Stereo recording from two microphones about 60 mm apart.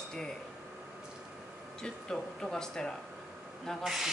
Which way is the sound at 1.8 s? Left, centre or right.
Centre.